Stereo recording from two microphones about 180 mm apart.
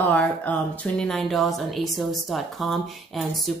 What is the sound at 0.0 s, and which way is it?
A woman's voice, 10° left (ahead or behind).